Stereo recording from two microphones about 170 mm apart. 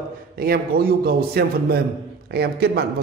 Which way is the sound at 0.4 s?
65° right (ahead or behind).